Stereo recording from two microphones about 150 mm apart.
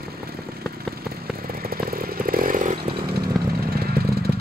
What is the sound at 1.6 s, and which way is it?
Chainsaw, 80° right.